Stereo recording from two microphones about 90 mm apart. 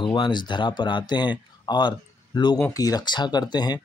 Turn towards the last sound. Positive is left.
turn(degrees=50)  # may be behind; listen again after turning